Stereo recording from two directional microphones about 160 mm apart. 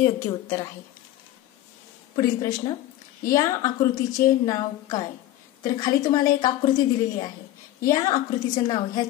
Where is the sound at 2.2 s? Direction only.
25° left (ahead or behind).